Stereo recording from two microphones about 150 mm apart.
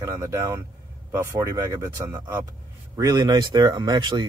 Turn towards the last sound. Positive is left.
turn(degrees=-30)  # may be behind; listen again after turning